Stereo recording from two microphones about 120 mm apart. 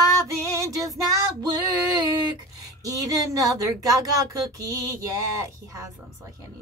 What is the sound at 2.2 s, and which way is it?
A woman's voice, 30° right (ahead or behind).